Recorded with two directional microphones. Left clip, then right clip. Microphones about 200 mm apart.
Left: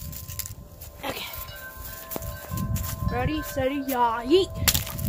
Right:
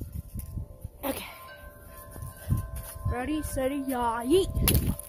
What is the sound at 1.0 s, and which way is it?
Music, 45° right (ahead or behind).